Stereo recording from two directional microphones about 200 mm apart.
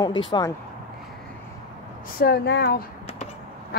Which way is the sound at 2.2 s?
55° left (ahead or behind).